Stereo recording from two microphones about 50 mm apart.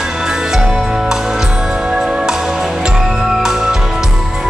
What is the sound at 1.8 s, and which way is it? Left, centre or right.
Music, centre.